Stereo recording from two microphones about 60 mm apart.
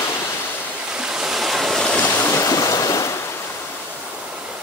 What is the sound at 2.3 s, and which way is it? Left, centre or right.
Stream, left.